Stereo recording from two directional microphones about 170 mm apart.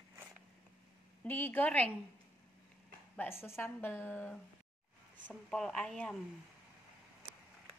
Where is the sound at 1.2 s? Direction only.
10° left (ahead or behind).